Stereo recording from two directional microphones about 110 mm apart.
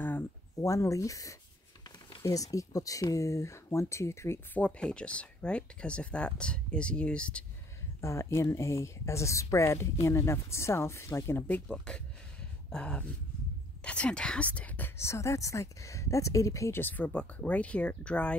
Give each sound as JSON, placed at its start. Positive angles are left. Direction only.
{"t": 0.6, "sound": "speech", "side_deg": 30}
{"t": 4.6, "sound": "speech", "side_deg": 10}
{"t": 8.0, "sound": "speech", "side_deg": 25}
{"t": 15.0, "sound": "speech", "side_deg": 25}